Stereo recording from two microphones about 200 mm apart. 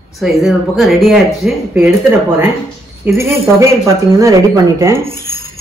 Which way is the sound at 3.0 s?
10° right (ahead or behind).